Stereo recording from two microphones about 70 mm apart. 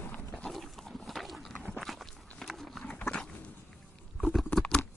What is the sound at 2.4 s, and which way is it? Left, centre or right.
Run, centre.